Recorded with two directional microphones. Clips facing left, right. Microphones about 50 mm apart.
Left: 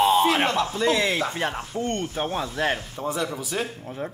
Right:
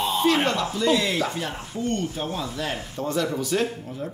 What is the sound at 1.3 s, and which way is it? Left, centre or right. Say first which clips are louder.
Speech: left 3 dB; left.